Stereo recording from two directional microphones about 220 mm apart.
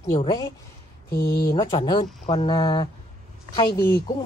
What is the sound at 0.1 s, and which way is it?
Speech, 20° left (ahead or behind).